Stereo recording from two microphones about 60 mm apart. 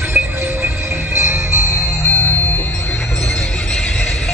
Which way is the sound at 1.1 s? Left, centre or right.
Right.